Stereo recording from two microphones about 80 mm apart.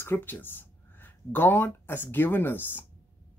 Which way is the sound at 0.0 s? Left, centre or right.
Left.